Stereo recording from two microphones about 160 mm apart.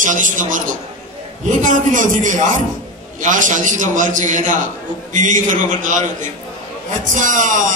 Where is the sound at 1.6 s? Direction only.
50° right (ahead or behind).